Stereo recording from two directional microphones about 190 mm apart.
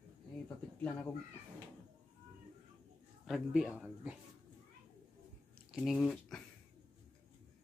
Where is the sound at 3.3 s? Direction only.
Centre (ahead or behind).